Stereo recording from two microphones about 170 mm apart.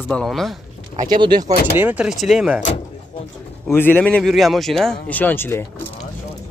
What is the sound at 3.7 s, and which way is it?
Speech, 10° left (ahead or behind).